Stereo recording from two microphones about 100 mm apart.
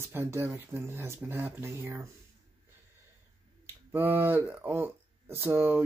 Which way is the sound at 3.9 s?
20° right (ahead or behind).